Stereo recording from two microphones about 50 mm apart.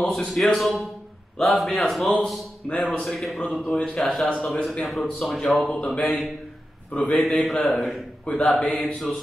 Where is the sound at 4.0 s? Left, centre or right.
Left.